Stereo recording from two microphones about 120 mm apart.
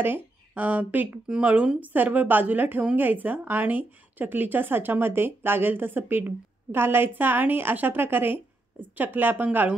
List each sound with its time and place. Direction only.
0.0 s speech: 15° right (ahead or behind)